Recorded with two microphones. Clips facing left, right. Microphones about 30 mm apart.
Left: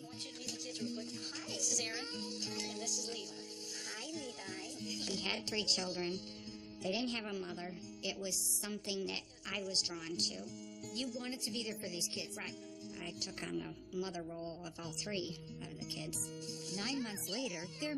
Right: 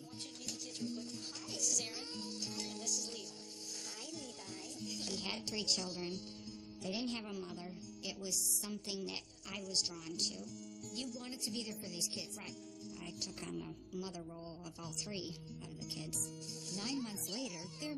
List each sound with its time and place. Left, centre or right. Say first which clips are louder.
0.7 s music: right 1 dB; left
4.8 s speech: left 3 dB; left
16.7 s speech: left 1 dB; left